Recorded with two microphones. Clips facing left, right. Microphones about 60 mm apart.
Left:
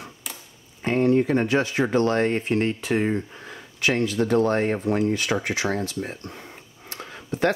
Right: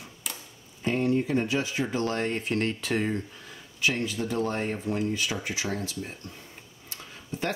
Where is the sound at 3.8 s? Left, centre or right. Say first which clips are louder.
Left 6 dB; left.